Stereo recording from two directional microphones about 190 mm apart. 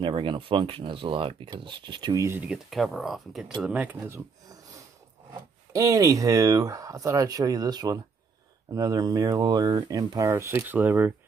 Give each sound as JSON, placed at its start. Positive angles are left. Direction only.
{"t": 0.0, "sound": "speech", "side_deg": -25}